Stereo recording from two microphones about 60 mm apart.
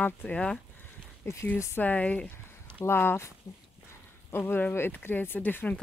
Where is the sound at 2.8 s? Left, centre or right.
Left.